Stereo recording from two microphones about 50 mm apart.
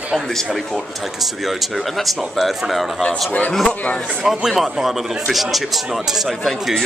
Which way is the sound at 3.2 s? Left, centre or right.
Left.